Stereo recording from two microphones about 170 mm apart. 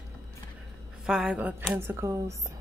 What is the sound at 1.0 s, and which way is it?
Speech, 5° right (ahead or behind).